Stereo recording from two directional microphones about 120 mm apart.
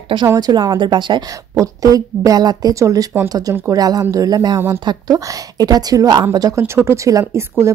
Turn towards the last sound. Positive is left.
turn(degrees=-25)  # may be behind; listen again after turning